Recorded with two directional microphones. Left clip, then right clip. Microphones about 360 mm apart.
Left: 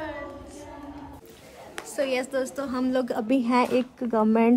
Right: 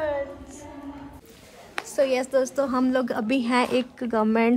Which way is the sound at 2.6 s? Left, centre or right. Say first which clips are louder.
Right 3 dB; centre.